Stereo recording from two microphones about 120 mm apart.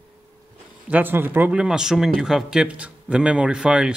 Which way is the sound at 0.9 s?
15° right (ahead or behind).